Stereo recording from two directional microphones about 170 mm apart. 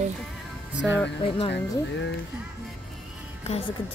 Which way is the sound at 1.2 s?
35° left (ahead or behind).